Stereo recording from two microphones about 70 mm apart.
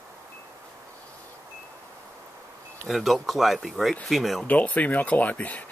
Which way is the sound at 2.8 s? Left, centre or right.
Centre.